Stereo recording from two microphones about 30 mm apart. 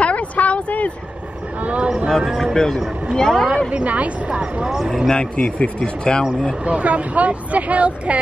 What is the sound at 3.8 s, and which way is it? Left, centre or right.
Speech, right.